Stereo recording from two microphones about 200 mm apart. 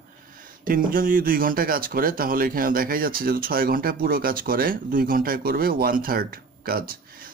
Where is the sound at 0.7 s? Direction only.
45° right (ahead or behind).